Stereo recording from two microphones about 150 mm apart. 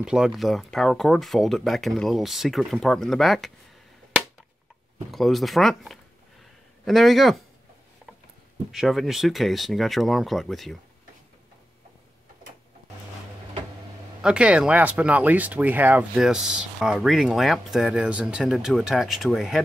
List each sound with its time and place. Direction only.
0.0 s speech: 5° right (ahead or behind)
5.1 s speech: centre (ahead or behind)
8.7 s speech: centre (ahead or behind)
14.2 s speech: 5° right (ahead or behind)